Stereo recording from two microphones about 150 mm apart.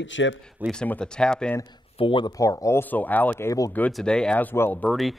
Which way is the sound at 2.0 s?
35° left (ahead or behind).